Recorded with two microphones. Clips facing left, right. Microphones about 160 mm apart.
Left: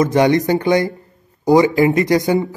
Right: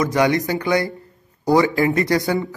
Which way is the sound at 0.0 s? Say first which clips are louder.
Left 4 dB; 25° left (ahead or behind).